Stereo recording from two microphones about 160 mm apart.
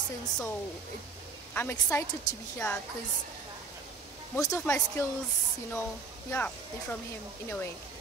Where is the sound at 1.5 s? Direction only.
10° left (ahead or behind).